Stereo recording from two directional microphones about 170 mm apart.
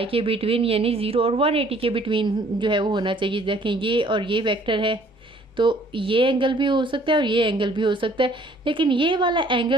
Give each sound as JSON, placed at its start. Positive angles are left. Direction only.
{"t": 0.0, "sound": "a woman's voice", "side_deg": -35}